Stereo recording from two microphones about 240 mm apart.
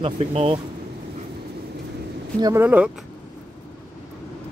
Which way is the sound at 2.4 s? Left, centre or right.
Centre.